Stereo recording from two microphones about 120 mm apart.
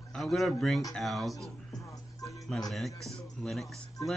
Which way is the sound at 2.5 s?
5° left (ahead or behind).